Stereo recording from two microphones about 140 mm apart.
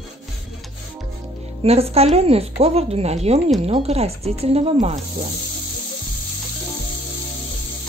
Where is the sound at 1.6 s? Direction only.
45° right (ahead or behind).